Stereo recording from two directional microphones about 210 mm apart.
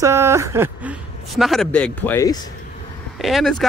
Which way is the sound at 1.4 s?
Centre (ahead or behind).